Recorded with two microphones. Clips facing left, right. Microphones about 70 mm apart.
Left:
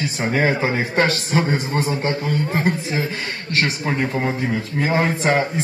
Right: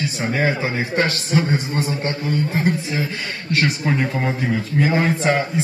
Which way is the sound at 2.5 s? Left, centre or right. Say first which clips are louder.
Even; left.